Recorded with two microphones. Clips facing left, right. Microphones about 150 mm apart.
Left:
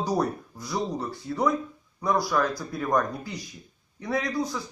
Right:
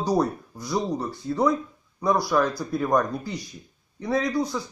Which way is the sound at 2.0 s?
15° right (ahead or behind).